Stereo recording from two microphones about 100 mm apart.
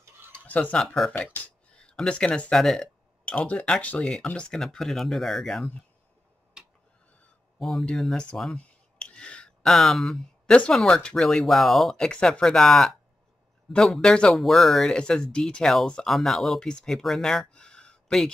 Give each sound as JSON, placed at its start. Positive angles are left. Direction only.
{"t": 0.0, "sound": "a sound", "side_deg": -25}
{"t": 0.5, "sound": "speech", "side_deg": 15}
{"t": 0.8, "sound": "speech", "side_deg": 0}
{"t": 1.1, "sound": "speech", "side_deg": 10}
{"t": 6.6, "sound": "tick-tock", "side_deg": -5}
{"t": 7.5, "sound": "speech", "side_deg": 0}